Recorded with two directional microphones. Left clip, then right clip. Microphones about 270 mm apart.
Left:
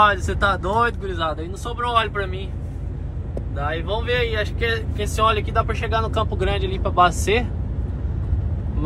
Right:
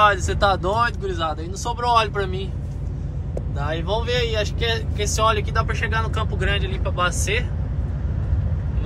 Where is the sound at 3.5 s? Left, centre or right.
Centre.